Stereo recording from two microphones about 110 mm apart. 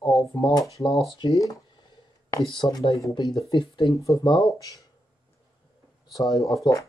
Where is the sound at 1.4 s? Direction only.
35° left (ahead or behind).